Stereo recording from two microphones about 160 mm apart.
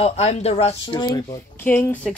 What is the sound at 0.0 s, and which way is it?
Speech, 45° left (ahead or behind).